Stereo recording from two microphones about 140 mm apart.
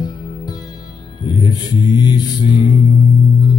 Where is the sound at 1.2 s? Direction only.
30° left (ahead or behind).